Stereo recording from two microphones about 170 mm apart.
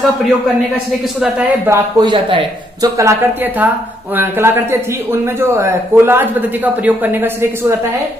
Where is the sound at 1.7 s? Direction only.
25° right (ahead or behind).